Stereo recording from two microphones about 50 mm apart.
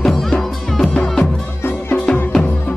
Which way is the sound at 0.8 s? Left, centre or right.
Left.